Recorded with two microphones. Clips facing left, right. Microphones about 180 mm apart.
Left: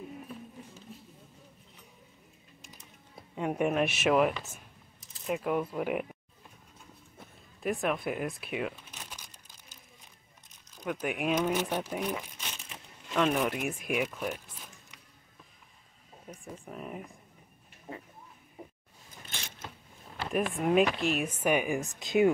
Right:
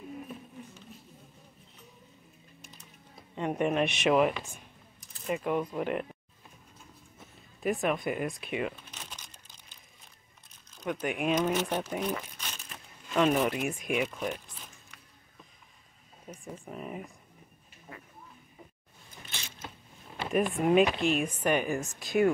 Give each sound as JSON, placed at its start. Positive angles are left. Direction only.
{"t": 3.3, "sound": "speech", "side_deg": 5}
{"t": 7.6, "sound": "speech", "side_deg": 0}
{"t": 8.7, "sound": "crumpling", "side_deg": 10}
{"t": 10.9, "sound": "speech", "side_deg": 5}
{"t": 13.1, "sound": "speech", "side_deg": -5}
{"t": 16.3, "sound": "speech", "side_deg": 0}
{"t": 17.9, "sound": "a sound", "side_deg": 25}
{"t": 20.2, "sound": "speech", "side_deg": 0}